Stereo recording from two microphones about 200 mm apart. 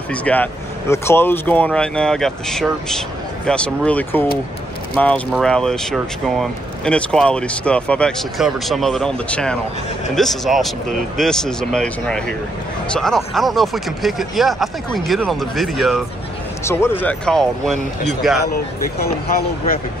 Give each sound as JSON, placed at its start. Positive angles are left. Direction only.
{"t": 0.1, "sound": "speech", "side_deg": 5}
{"t": 16.6, "sound": "speech", "side_deg": 10}